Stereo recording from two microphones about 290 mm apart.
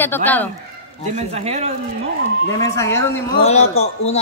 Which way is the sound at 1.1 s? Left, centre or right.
Right.